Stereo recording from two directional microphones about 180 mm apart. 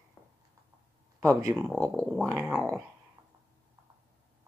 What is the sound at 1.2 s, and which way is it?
Speech, 20° right (ahead or behind).